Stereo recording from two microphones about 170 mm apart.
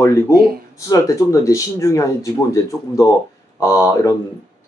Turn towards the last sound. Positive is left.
turn(degrees=20)  # may be behind; listen again after turning